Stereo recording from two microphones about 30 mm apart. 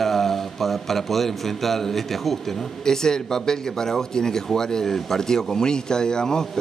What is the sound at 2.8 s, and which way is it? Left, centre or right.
Speech, left.